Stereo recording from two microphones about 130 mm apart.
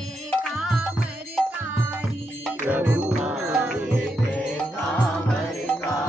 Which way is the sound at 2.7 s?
10° right (ahead or behind).